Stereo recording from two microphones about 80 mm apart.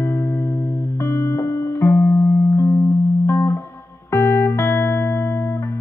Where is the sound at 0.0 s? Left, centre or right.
Left.